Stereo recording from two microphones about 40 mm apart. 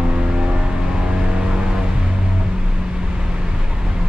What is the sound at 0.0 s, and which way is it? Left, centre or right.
Vehicle, right.